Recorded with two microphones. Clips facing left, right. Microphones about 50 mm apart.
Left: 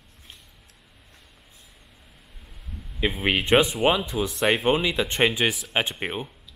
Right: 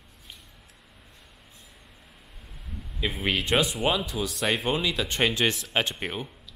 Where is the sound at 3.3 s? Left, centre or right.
Left.